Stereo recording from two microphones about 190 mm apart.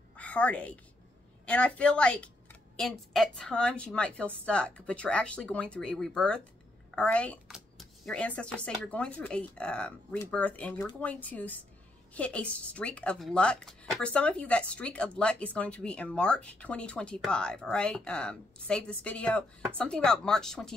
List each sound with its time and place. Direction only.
0.2 s a woman's voice: 5° left (ahead or behind)